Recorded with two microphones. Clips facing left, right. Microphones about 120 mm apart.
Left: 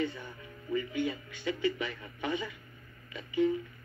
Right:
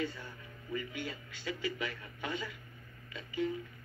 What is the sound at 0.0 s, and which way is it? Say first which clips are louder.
A man's voice: left 4 dB; 20° left (ahead or behind).